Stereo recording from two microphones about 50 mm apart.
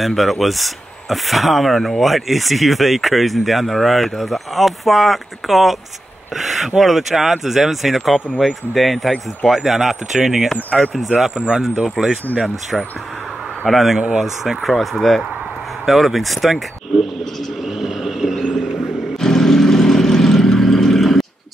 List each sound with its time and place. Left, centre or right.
0.0 s speech: centre
11.3 s speech: centre
11.8 s speech: centre
13.7 s speech: centre
17.7 s a sound: centre
19.1 s vehicle: centre